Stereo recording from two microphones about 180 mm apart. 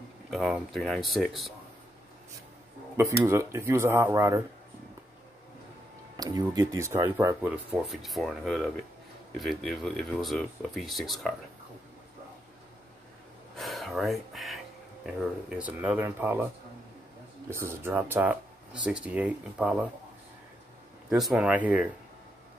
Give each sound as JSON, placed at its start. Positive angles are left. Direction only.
{"t": 0.3, "sound": "speech", "side_deg": 0}
{"t": 3.0, "sound": "speech", "side_deg": -15}
{"t": 6.1, "sound": "speech", "side_deg": -20}
{"t": 13.6, "sound": "speech", "side_deg": 0}
{"t": 17.6, "sound": "speech", "side_deg": -10}
{"t": 21.1, "sound": "speech", "side_deg": -5}